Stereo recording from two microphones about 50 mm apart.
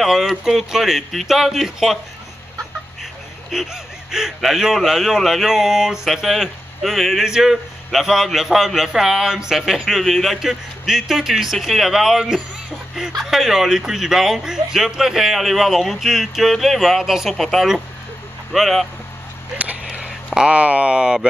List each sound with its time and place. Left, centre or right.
0.0 s speech: centre
3.5 s a man's voice: centre
9.8 s a man's voice: centre
17.3 s speech: centre
19.5 s a sound: right
20.4 s speech: right